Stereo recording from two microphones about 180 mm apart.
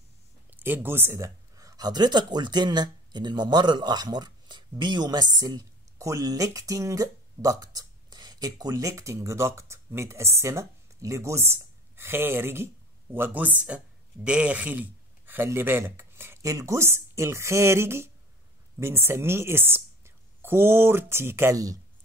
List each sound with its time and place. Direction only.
0.5 s speech: 10° right (ahead or behind)